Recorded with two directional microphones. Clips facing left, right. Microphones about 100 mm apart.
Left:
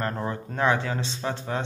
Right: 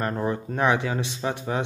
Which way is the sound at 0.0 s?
15° right (ahead or behind).